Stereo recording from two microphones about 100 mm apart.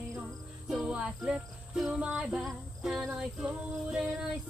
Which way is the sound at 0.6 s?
10° right (ahead or behind).